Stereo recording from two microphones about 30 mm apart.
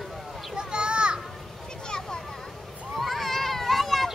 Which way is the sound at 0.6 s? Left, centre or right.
Right.